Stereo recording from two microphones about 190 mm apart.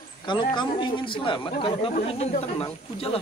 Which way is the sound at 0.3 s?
25° left (ahead or behind).